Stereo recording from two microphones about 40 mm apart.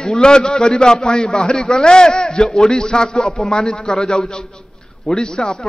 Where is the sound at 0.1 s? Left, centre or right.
Left.